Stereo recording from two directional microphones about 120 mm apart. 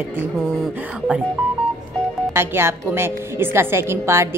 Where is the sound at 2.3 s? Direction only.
20° right (ahead or behind).